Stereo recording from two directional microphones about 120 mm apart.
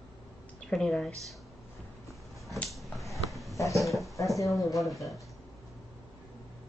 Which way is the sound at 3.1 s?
Centre (ahead or behind).